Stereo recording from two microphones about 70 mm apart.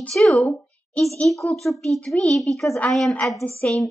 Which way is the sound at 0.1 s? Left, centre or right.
Centre.